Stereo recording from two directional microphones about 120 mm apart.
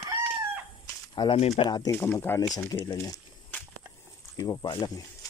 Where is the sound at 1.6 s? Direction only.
35° left (ahead or behind).